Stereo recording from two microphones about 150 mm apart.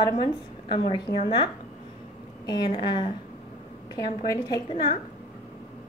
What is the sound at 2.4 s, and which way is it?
A woman's voice, 30° left (ahead or behind).